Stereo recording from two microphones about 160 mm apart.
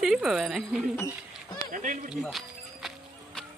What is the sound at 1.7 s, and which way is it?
Speech, 55° right (ahead or behind).